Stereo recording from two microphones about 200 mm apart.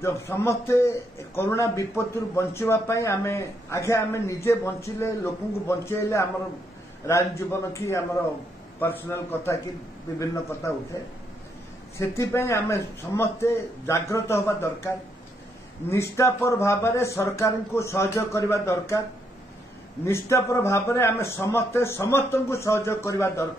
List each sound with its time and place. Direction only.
0.0 s a man's voice: 15° left (ahead or behind)
12.0 s a man's voice: 15° left (ahead or behind)
15.9 s a man's voice: 15° left (ahead or behind)
20.1 s a man's voice: 15° left (ahead or behind)